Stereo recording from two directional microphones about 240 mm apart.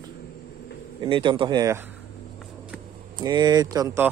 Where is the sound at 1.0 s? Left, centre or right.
Right.